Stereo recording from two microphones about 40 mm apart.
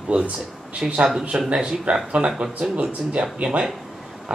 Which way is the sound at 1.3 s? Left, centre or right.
Right.